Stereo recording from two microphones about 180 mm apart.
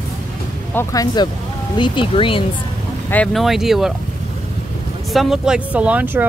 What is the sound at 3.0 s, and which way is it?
Speech, 5° left (ahead or behind).